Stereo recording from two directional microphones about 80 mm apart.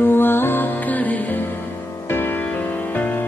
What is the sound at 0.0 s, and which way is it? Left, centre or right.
Music, left.